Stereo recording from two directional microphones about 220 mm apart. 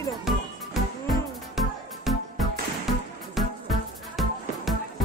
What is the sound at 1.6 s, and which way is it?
Music, centre (ahead or behind).